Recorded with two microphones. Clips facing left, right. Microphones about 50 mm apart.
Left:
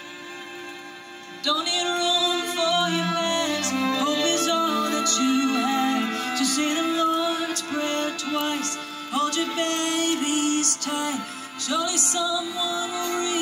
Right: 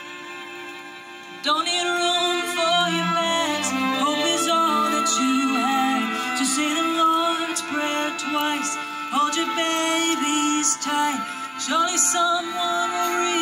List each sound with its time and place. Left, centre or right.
1.4 s music: right